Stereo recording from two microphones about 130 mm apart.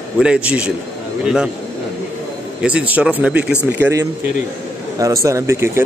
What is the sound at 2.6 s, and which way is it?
Speech, 10° right (ahead or behind).